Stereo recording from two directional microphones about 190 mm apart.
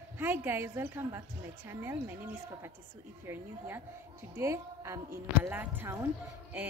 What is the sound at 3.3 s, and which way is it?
A woman's voice, 10° right (ahead or behind).